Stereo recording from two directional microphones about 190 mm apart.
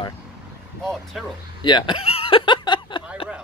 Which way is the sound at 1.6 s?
25° left (ahead or behind).